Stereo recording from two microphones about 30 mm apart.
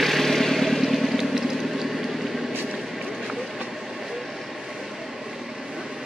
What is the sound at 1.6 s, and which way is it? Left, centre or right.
Vehicle, centre.